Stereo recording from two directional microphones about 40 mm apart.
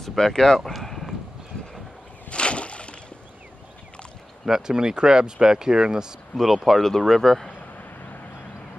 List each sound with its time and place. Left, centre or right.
0.0 s speech: centre
0.7 s clip-clop: centre
2.2 s a sound: left
4.5 s speech: centre
6.3 s speech: centre